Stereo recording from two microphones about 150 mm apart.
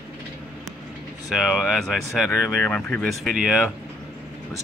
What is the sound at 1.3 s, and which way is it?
Speech, centre (ahead or behind).